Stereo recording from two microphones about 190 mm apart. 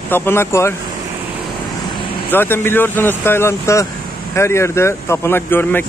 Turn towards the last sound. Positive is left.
turn(degrees=10)  # may be behind; listen again after turning